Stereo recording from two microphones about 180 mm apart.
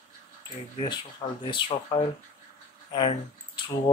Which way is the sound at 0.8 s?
25° left (ahead or behind).